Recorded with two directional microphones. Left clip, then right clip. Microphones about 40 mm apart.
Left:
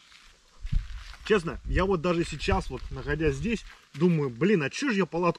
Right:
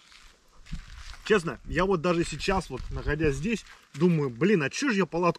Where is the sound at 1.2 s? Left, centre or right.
Centre.